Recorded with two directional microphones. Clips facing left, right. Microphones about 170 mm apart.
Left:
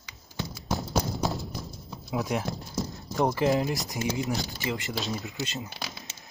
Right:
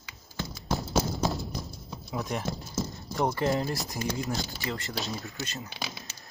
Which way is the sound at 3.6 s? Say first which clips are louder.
Left 2 dB; 20° left (ahead or behind).